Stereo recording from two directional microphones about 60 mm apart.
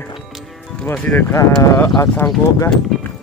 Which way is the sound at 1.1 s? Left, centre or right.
Left.